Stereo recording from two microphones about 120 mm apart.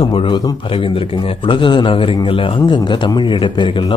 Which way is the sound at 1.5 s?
45° left (ahead or behind).